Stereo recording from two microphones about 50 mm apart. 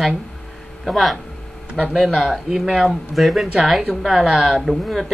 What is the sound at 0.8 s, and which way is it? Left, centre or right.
Speech, centre.